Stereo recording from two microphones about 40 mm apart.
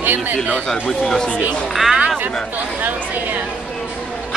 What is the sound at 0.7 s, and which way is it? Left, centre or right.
Speech, centre.